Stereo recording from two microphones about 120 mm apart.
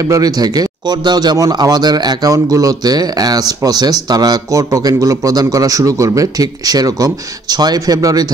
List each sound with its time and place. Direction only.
0.0 s speech: 30° right (ahead or behind)